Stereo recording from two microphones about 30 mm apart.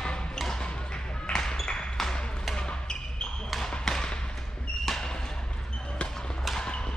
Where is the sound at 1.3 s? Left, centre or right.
Left.